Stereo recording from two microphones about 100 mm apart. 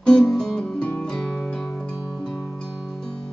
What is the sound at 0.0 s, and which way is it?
Music, 5° left (ahead or behind).